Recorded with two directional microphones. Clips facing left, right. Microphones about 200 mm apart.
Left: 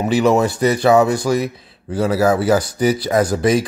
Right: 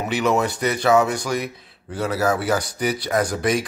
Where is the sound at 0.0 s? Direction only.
30° left (ahead or behind).